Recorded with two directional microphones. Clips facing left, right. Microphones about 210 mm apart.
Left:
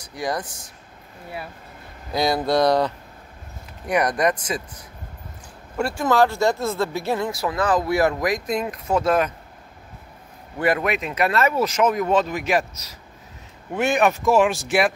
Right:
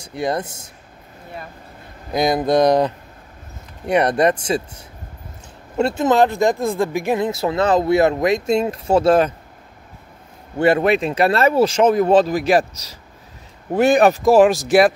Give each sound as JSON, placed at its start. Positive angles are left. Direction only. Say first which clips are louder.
{"t": 0.0, "sound": "speech", "louder": "right 5 dB", "side_deg": -25}
{"t": 2.1, "sound": "speech", "louder": "right 4 dB", "side_deg": -20}
{"t": 10.6, "sound": "speech", "louder": "right 6 dB", "side_deg": -30}